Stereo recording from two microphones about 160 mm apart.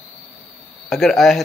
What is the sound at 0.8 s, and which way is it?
Speech, centre (ahead or behind).